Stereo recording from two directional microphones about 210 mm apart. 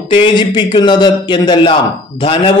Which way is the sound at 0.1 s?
20° left (ahead or behind).